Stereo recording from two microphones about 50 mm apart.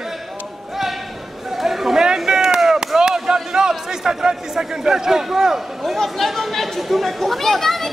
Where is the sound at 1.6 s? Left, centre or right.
Centre.